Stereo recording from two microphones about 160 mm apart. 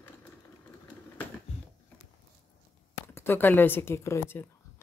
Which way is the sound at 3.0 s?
15° left (ahead or behind).